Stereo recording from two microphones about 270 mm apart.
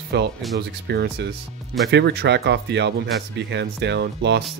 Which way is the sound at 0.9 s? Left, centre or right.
Right.